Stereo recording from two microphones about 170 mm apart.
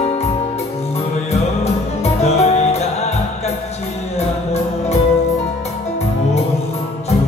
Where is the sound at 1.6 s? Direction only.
40° left (ahead or behind).